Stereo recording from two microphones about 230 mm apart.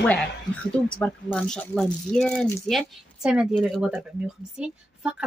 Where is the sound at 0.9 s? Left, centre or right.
Centre.